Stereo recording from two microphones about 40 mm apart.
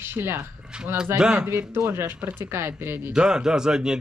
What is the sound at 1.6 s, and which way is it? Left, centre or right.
Speech, right.